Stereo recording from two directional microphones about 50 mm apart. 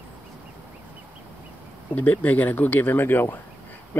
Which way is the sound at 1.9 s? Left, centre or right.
Left.